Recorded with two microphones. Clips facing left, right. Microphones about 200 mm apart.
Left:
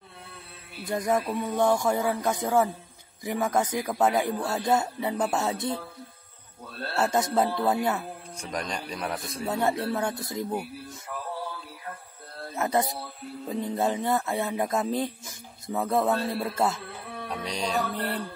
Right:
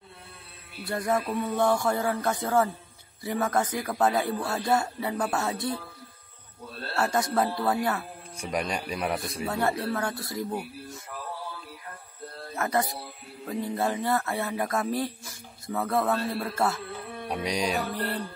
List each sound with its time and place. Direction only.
0.8 s speech: 15° left (ahead or behind)
7.0 s speech: 20° left (ahead or behind)
8.4 s speech: 10° right (ahead or behind)
9.5 s speech: 20° left (ahead or behind)
12.5 s speech: 20° left (ahead or behind)
17.3 s speech: 10° right (ahead or behind)
17.9 s speech: 20° left (ahead or behind)